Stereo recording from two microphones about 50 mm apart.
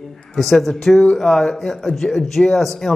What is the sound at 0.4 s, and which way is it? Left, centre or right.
A man's voice, centre.